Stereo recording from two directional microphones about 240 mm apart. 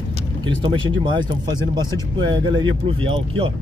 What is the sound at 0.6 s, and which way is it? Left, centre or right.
Speech, centre.